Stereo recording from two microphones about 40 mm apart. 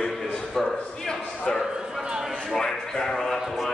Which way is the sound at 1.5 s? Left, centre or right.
Centre.